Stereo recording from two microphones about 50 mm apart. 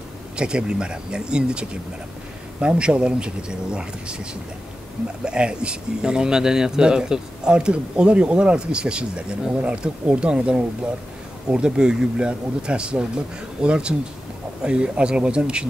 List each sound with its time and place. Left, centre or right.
0.4 s speech: centre